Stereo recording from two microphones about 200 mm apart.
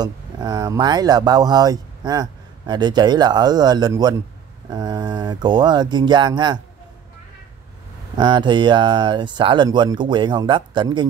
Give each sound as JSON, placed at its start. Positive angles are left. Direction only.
{"t": 0.0, "sound": "speech", "side_deg": -20}
{"t": 8.2, "sound": "speech", "side_deg": -20}